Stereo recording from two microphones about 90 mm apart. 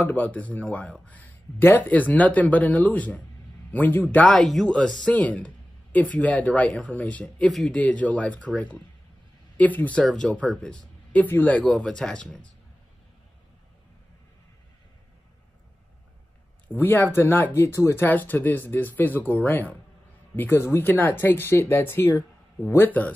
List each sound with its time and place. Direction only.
0.0 s speech: 20° left (ahead or behind)
4.4 s speech: 5° left (ahead or behind); by 11.6 s 20° left (ahead or behind)
11.6 s speech: 5° left (ahead or behind)
16.6 s speech: 20° left (ahead or behind)